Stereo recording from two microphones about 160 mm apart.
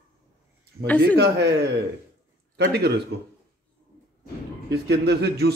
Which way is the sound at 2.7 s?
85° right.